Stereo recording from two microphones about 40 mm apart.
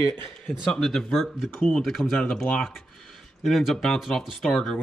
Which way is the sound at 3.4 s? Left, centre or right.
Centre.